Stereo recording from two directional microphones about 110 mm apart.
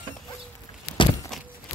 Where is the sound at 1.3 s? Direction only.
Centre (ahead or behind).